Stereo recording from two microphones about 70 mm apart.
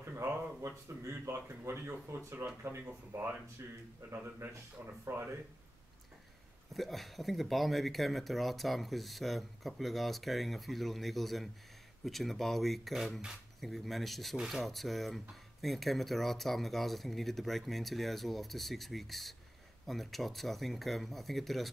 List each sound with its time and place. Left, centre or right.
0.0 s a sound: right
0.6 s speech: right
6.7 s speech: centre